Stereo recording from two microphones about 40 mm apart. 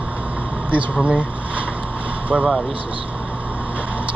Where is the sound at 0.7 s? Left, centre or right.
Right.